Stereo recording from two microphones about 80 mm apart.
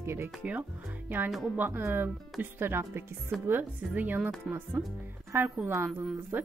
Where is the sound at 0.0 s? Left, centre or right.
Right.